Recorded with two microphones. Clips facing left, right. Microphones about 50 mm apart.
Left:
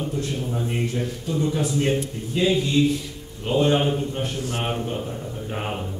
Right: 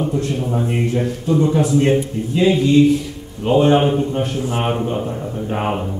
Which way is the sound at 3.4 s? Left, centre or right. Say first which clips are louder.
Right 7 dB; right.